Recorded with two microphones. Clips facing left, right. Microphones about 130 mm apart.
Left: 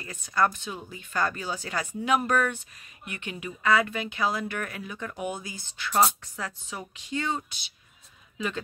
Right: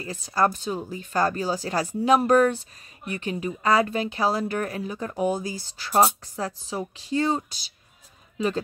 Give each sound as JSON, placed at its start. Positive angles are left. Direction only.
{"t": 0.0, "sound": "speech", "side_deg": -30}